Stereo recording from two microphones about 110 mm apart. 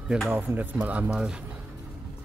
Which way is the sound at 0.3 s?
15° right (ahead or behind).